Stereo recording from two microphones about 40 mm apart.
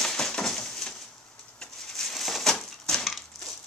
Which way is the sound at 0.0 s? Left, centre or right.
Centre.